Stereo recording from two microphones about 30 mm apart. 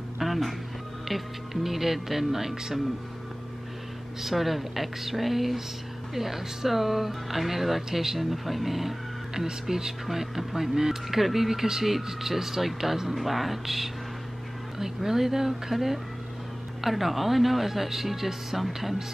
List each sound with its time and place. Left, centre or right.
0.2 s music: centre
1.0 s speech: centre
4.2 s speech: centre
9.3 s speech: centre
10.0 s speech: centre